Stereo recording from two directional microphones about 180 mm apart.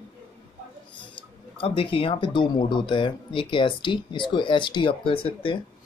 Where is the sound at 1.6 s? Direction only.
30° left (ahead or behind).